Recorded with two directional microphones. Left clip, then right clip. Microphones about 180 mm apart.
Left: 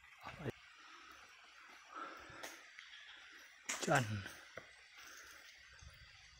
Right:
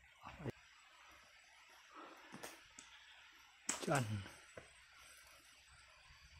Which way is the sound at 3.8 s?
5° left (ahead or behind).